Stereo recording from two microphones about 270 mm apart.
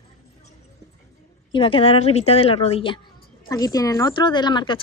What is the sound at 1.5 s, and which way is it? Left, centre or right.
A woman's voice, centre.